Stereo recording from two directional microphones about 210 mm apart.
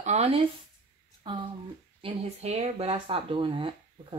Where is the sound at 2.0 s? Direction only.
30° right (ahead or behind).